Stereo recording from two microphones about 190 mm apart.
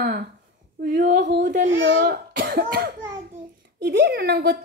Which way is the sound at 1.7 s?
70° right (ahead or behind).